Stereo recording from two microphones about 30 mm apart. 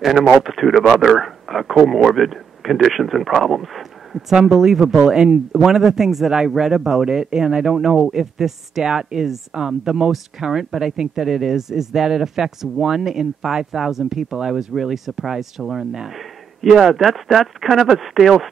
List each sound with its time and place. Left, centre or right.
0.0 s a man's voice: centre
4.3 s speech: centre
4.9 s speech: right; by 8.8 s centre
8.8 s speech: right
14.5 s speech: centre
15.6 s speech: centre